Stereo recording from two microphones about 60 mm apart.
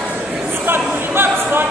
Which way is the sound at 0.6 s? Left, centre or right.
Right.